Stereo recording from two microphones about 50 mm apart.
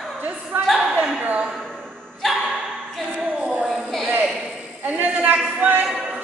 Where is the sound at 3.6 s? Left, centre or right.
Centre.